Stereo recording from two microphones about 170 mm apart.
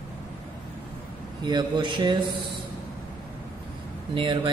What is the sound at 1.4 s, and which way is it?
Speech, 25° right (ahead or behind).